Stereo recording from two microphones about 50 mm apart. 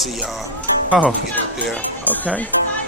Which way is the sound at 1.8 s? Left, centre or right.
Left.